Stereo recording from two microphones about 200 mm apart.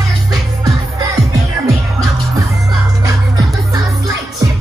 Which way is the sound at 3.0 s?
20° right (ahead or behind).